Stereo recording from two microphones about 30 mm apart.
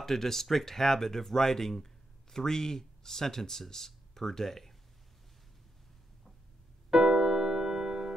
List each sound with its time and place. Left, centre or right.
0.0 s speech: centre
6.9 s keyboard: centre